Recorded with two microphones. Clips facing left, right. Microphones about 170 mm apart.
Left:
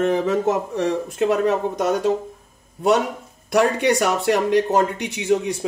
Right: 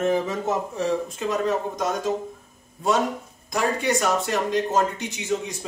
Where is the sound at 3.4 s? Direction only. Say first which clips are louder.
Left 6 dB; 70° left (ahead or behind).